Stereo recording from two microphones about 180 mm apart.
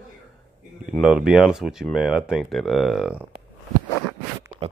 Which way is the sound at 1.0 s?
5° right (ahead or behind).